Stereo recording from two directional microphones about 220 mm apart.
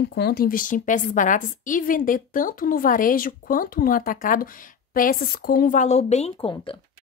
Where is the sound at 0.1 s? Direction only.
45° left (ahead or behind); by 6.8 s 25° left (ahead or behind).